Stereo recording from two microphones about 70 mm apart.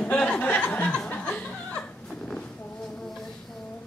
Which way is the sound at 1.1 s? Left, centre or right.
Centre.